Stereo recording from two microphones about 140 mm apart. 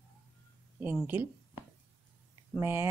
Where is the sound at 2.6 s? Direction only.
20° right (ahead or behind).